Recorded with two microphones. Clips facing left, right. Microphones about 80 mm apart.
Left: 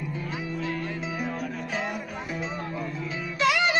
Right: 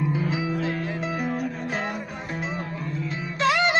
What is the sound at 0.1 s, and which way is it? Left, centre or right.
Music, right.